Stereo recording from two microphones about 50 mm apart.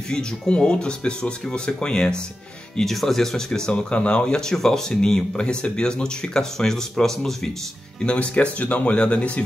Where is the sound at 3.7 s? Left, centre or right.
Left.